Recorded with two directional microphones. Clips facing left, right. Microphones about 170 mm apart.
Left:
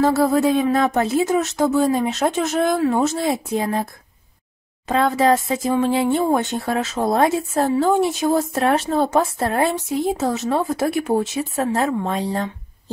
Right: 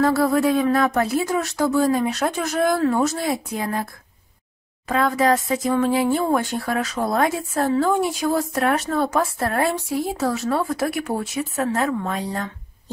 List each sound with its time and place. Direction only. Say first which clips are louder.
0.0 s speech: left 2 dB; 25° left (ahead or behind)
4.8 s speech: left 2 dB; 25° left (ahead or behind)